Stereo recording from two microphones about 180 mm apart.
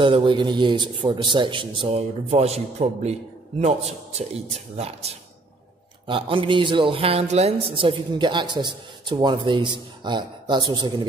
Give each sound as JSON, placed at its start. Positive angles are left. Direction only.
{"t": 0.0, "sound": "a man's voice", "side_deg": -30}